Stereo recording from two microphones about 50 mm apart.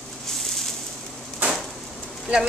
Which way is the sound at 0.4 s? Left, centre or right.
Centre.